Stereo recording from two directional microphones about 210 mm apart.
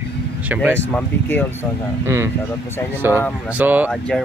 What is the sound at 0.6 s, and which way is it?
Speech, 10° left (ahead or behind).